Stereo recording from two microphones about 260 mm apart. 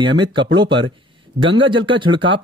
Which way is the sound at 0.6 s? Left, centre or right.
Centre.